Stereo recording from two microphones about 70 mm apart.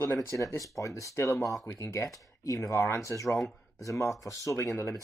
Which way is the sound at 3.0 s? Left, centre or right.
Left.